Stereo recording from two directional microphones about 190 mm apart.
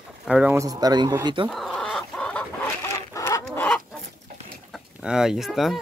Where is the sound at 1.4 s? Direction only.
Centre (ahead or behind).